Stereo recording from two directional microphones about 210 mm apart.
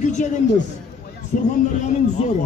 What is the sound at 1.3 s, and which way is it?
A man's voice, 35° left (ahead or behind).